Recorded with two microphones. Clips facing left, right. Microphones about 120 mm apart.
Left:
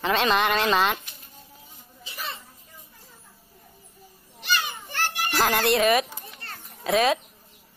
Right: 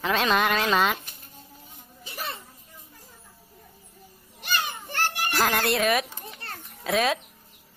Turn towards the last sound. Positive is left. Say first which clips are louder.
# left 3 dB
turn(degrees=0)  # may be behind; listen again after turning